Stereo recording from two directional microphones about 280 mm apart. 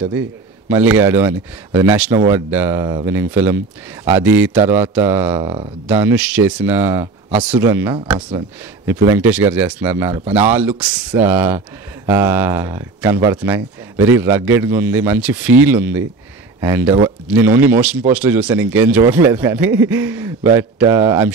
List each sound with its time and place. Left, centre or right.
0.7 s speech: centre
5.4 s speech: right
5.9 s speech: centre
8.9 s speech: centre